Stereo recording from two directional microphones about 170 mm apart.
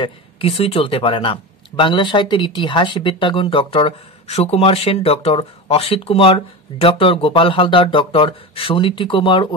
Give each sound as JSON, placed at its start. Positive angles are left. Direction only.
{"t": 0.0, "sound": "speech", "side_deg": 35}